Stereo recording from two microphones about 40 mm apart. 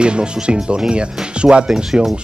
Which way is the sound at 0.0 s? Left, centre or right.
Right.